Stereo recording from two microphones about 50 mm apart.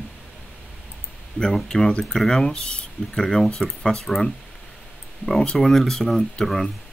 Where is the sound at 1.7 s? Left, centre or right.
Centre.